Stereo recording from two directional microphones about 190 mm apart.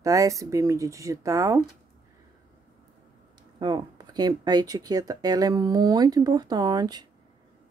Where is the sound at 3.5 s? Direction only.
25° right (ahead or behind).